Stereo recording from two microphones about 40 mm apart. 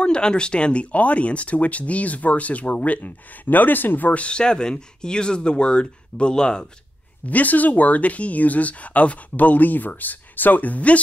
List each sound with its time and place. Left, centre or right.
0.0 s speech: left
4.1 s speech: left
7.2 s speech: left